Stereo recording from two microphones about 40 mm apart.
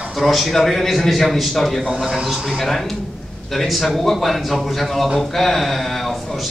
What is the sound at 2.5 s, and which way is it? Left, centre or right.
Speech, centre.